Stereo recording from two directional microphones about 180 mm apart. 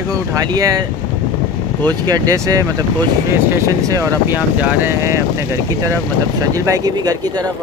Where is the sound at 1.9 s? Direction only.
20° right (ahead or behind).